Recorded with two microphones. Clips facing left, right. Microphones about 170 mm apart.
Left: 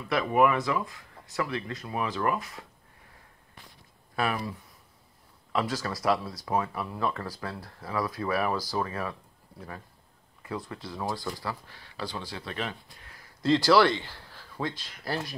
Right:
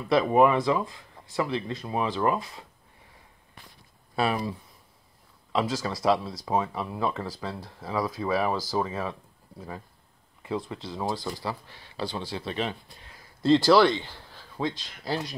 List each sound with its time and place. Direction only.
0.1 s speech: 30° right (ahead or behind)
4.1 s speech: 25° right (ahead or behind)
10.4 s speech: 20° right (ahead or behind)